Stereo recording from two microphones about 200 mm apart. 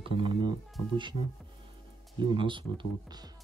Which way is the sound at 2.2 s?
25° right (ahead or behind).